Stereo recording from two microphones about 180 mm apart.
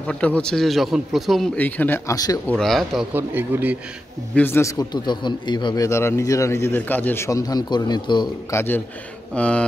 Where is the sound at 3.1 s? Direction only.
10° right (ahead or behind).